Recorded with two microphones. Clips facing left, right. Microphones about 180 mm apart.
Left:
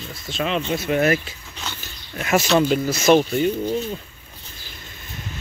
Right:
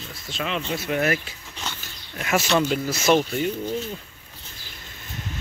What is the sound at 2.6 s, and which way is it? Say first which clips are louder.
Speech: left 4 dB; 35° left (ahead or behind).